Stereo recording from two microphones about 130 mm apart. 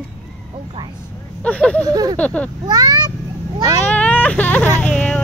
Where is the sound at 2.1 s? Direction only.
10° left (ahead or behind).